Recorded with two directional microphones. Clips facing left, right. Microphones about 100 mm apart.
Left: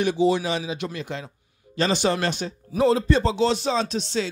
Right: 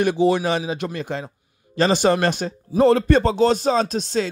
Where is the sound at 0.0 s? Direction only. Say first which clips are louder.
Right 3 dB; 55° right (ahead or behind).